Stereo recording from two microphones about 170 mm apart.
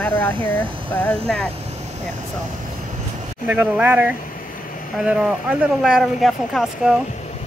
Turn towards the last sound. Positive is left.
turn(degrees=0)  # may be behind; listen again after turning